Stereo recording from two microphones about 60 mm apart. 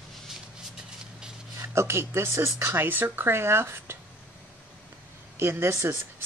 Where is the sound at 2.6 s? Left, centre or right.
Right.